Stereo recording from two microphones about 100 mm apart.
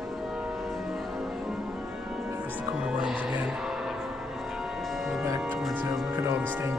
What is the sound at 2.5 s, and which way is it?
Music, 10° right (ahead or behind).